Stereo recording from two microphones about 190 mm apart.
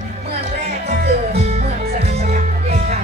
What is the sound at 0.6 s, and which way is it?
Music, 55° right (ahead or behind).